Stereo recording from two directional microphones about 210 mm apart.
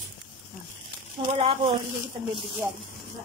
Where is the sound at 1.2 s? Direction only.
20° right (ahead or behind).